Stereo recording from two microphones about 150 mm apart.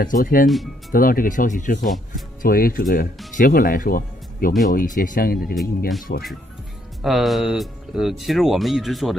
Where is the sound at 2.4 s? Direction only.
75° left (ahead or behind).